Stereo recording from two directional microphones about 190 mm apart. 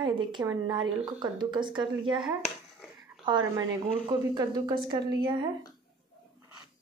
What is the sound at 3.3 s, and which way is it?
A woman's voice, 25° right (ahead or behind).